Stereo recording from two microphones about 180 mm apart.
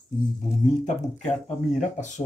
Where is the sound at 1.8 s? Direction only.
40° left (ahead or behind).